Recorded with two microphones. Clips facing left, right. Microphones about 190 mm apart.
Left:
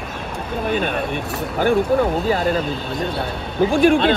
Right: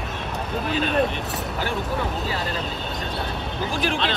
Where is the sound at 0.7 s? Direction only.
55° left (ahead or behind).